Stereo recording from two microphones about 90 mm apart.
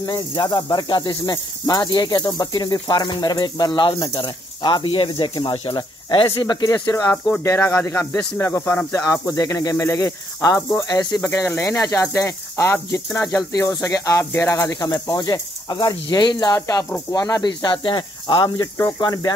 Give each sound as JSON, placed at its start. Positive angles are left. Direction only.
{"t": 0.5, "sound": "speech", "side_deg": 55}
{"t": 6.4, "sound": "speech", "side_deg": 50}
{"t": 10.9, "sound": "speech", "side_deg": 50}
{"t": 11.1, "sound": "speech", "side_deg": 35}
{"t": 16.5, "sound": "speech", "side_deg": 40}